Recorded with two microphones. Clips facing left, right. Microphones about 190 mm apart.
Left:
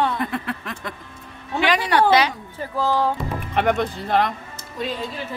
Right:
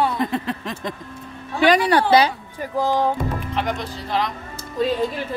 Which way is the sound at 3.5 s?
60° left (ahead or behind).